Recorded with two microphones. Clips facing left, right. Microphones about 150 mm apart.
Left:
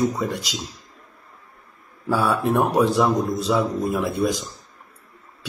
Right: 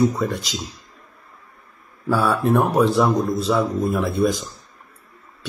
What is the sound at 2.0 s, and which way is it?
A man's voice, 15° left (ahead or behind).